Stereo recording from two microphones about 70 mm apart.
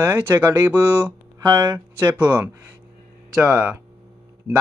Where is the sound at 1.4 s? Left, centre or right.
Right.